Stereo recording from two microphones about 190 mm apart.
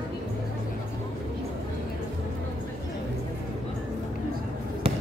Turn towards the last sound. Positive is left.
turn(degrees=-30)  # may be behind; listen again after turning